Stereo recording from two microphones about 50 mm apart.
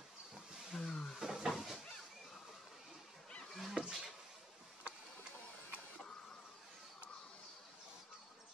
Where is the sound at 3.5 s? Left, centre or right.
Centre.